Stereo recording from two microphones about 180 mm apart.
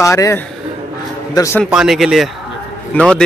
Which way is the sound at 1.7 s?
Centre (ahead or behind).